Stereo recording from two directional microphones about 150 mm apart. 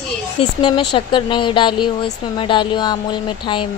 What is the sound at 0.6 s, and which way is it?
Speech, 30° left (ahead or behind).